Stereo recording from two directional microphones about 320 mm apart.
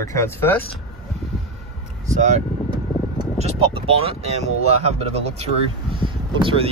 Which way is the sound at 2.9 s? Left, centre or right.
Centre.